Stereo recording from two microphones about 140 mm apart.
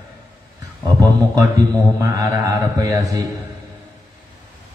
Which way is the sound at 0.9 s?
25° right (ahead or behind).